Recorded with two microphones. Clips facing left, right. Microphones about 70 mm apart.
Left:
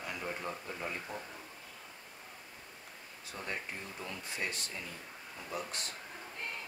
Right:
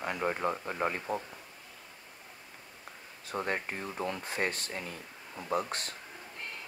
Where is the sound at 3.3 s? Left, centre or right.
Right.